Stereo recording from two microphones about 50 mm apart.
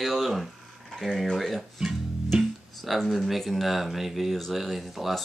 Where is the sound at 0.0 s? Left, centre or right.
Centre.